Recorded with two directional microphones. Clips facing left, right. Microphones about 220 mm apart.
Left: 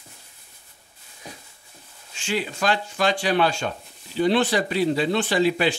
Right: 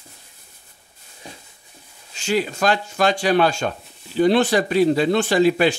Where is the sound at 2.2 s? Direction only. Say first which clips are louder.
Right 5 dB; 40° right (ahead or behind).